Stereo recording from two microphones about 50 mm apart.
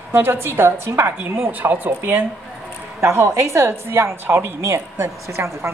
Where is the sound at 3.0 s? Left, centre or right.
Right.